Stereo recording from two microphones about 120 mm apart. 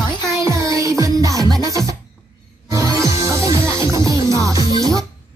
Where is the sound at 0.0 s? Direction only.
35° left (ahead or behind).